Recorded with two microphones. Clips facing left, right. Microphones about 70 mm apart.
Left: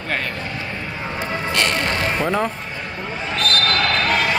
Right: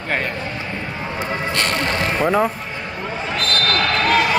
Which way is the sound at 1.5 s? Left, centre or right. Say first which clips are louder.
Left 1 dB; right.